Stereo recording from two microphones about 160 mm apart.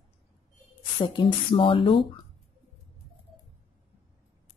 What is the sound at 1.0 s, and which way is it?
Speech, 30° left (ahead or behind).